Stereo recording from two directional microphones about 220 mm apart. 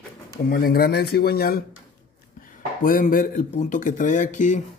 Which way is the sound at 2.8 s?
40° left (ahead or behind).